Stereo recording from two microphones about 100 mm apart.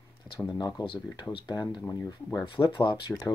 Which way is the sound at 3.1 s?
15° left (ahead or behind).